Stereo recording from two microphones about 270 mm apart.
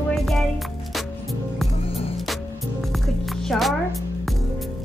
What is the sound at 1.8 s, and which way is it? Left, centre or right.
Music, left.